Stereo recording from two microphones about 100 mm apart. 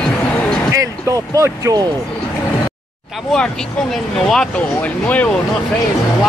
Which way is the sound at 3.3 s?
5° left (ahead or behind).